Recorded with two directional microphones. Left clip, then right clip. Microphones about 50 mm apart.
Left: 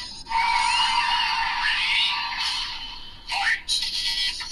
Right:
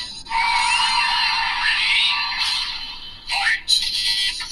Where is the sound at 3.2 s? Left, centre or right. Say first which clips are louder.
Right 5 dB; right.